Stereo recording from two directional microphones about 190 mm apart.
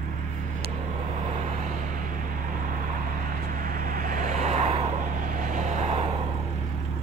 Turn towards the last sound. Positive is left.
turn(degrees=-35)  # may be behind; listen again after turning